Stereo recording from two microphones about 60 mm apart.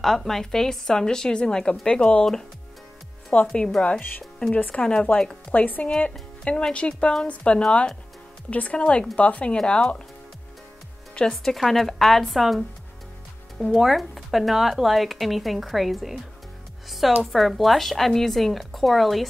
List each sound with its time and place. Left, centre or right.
0.0 s a woman's voice: centre
3.3 s a woman's voice: centre
5.1 s a woman's voice: left; by 9.9 s centre
11.1 s speech: centre
13.7 s speech: centre
17.2 s speech: centre